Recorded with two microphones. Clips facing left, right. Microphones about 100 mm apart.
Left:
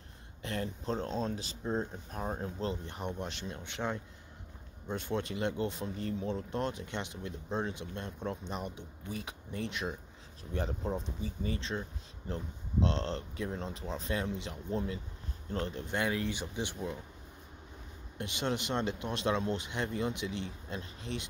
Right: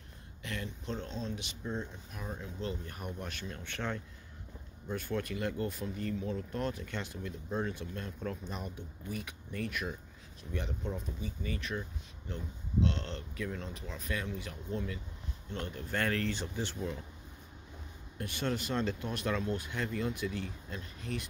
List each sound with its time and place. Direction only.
0.4 s speech: 35° left (ahead or behind)
2.7 s speech: 25° left (ahead or behind)
10.5 s speech: 35° left (ahead or behind)
15.9 s speech: 15° left (ahead or behind)
18.1 s speech: 20° left (ahead or behind)